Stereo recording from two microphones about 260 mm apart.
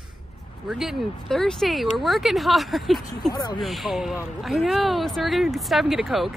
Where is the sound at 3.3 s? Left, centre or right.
Centre.